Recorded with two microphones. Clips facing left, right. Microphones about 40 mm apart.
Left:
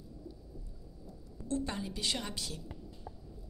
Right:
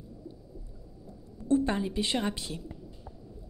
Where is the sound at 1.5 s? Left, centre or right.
Right.